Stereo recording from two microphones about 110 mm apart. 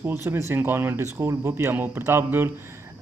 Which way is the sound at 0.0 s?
20° right (ahead or behind).